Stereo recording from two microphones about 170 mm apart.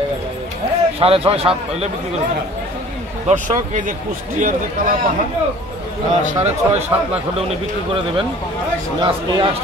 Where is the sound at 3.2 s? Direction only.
45° right (ahead or behind).